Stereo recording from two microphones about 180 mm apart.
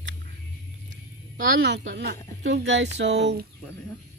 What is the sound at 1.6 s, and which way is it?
Speech, 85° right.